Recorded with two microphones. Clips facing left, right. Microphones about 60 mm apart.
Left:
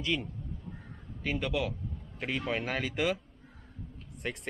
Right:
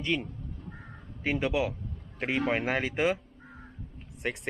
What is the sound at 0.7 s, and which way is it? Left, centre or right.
Crow, right.